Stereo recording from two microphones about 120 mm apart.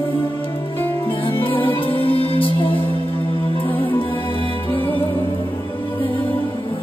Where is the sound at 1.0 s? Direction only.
45° left (ahead or behind).